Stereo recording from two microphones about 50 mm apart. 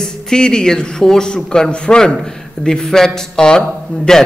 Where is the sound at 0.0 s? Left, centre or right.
Centre.